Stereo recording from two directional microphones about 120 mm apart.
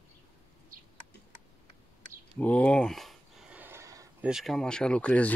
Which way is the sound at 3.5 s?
20° right (ahead or behind).